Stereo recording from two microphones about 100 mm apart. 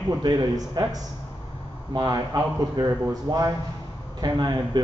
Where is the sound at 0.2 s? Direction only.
45° right (ahead or behind).